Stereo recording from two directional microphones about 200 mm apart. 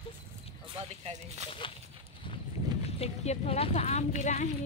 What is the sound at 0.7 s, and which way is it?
Speech, 30° right (ahead or behind).